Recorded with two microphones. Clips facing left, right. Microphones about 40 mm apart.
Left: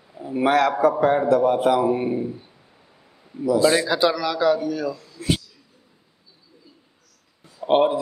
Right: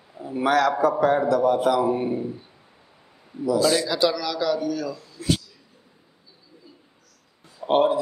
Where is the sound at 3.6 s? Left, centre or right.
Left.